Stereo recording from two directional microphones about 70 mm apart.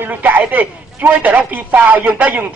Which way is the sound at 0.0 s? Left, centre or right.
Right.